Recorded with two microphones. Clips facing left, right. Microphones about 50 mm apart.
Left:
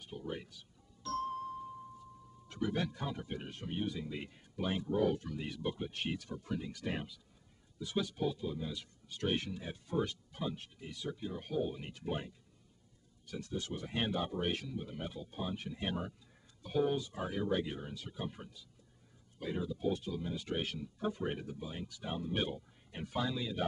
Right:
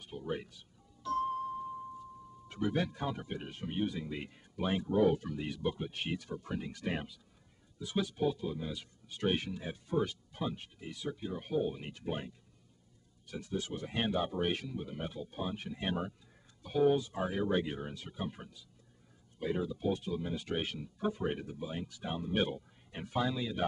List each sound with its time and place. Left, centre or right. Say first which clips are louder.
0.1 s music: right 4 dB; centre
2.4 s speech: right 3 dB; centre
13.3 s speech: right 2 dB; centre